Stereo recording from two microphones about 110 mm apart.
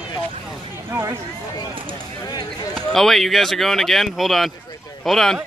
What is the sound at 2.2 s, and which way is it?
Speech, 35° left (ahead or behind).